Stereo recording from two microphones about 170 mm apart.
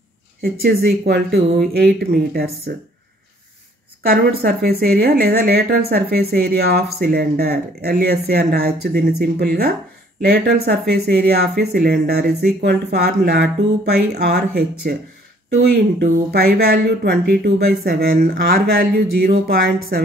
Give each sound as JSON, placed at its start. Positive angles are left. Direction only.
{"t": 0.4, "sound": "speech", "side_deg": -65}
{"t": 4.0, "sound": "speech", "side_deg": -65}
{"t": 15.7, "sound": "speech", "side_deg": -65}